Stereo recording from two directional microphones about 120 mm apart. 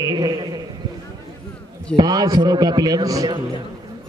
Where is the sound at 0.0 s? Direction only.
35° right (ahead or behind).